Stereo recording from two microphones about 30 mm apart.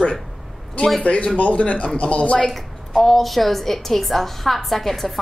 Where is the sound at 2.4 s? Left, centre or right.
Centre.